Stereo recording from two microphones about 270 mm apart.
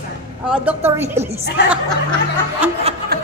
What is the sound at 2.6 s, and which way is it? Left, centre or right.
Speech, centre.